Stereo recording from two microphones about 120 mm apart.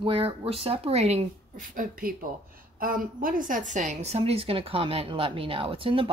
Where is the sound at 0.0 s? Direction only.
50° right (ahead or behind); by 1.2 s 65° right (ahead or behind).